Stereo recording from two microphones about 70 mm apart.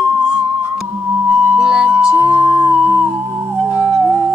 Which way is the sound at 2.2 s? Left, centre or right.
Right.